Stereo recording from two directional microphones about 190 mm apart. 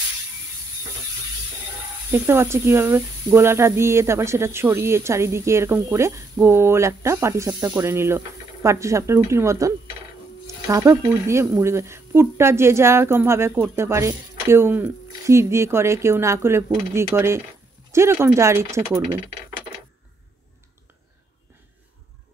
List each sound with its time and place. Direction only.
2.0 s speech: 10° right (ahead or behind)
18.9 s speech: 25° right (ahead or behind)